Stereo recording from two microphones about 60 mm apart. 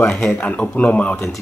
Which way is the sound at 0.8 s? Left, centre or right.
Left.